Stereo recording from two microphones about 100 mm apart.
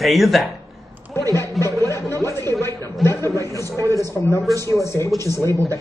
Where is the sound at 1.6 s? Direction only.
30° left (ahead or behind).